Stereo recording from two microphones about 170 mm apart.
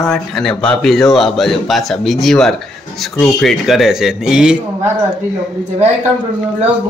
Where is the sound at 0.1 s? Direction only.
5° left (ahead or behind).